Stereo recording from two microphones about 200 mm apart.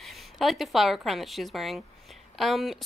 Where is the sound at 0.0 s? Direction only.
Centre (ahead or behind).